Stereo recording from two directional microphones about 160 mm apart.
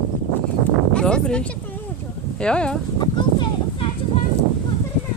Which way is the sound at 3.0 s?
30° left (ahead or behind).